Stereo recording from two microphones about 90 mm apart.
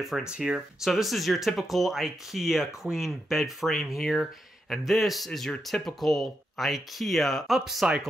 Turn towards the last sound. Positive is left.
turn(degrees=0)  # may be behind; listen again after turning